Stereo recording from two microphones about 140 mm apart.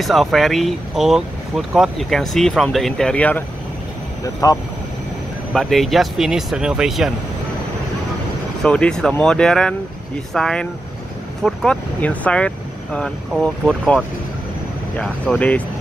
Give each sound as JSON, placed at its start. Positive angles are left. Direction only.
{"t": 0.0, "sound": "speech", "side_deg": 0}
{"t": 4.4, "sound": "speech", "side_deg": 25}
{"t": 5.5, "sound": "speech", "side_deg": 0}
{"t": 8.6, "sound": "speech", "side_deg": 5}